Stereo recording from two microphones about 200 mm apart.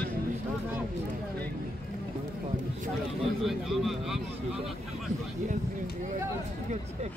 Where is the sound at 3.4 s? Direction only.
Centre (ahead or behind).